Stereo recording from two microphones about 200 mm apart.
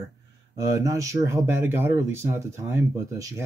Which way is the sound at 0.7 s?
15° right (ahead or behind).